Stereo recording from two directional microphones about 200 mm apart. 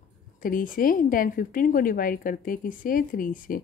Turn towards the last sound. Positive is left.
turn(degrees=45)  # may be behind; listen again after turning